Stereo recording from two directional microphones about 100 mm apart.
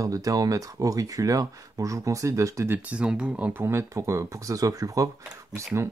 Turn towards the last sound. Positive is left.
turn(degrees=-25)  # may be behind; listen again after turning